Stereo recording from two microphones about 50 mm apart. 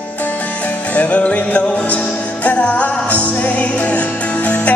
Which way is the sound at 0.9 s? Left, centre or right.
Left.